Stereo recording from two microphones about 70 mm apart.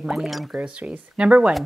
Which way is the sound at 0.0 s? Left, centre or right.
Centre.